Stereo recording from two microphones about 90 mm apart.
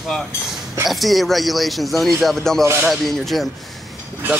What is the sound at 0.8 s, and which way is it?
Speech, centre (ahead or behind).